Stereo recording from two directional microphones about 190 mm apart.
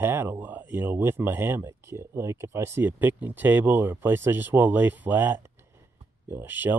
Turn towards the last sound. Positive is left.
turn(degrees=-10)  # may be behind; listen again after turning